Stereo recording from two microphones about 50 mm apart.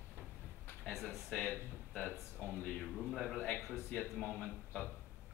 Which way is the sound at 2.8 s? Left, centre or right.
Centre.